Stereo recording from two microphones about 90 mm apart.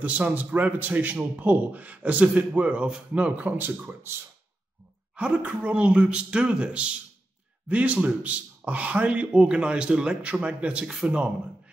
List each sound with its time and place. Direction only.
0.0 s a man's voice: 15° right (ahead or behind)
5.1 s a man's voice: 15° right (ahead or behind)